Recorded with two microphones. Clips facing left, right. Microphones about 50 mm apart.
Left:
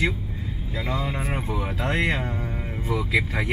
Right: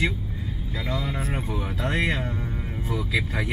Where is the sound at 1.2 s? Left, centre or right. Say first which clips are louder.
Left 2 dB; left.